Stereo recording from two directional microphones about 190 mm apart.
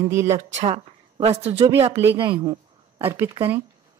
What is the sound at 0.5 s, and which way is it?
A woman's voice, 30° right (ahead or behind).